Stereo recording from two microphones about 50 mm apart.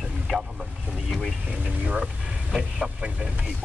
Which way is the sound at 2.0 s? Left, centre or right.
Centre.